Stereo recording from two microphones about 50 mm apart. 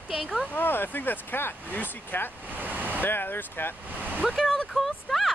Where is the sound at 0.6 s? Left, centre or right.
Left.